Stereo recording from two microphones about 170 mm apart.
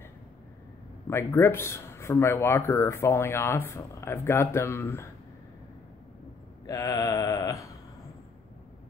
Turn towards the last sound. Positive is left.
turn(degrees=20)  # may be behind; listen again after turning